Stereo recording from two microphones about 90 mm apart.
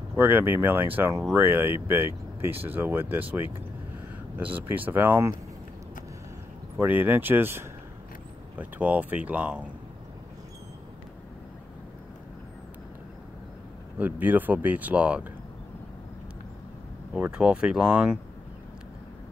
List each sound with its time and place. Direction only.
0.1 s speech: 25° right (ahead or behind)
6.8 s speech: 20° right (ahead or behind)
13.9 s speech: 20° right (ahead or behind)
17.1 s speech: 10° right (ahead or behind)